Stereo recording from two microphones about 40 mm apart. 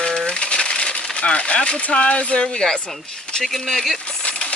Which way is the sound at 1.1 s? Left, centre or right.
Left.